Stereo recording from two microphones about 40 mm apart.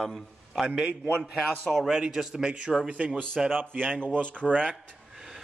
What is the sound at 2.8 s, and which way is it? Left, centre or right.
Speech, right.